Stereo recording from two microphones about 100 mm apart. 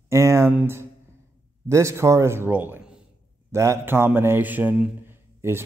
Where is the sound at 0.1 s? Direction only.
30° right (ahead or behind).